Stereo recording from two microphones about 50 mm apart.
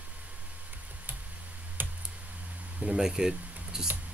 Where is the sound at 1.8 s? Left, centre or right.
Right.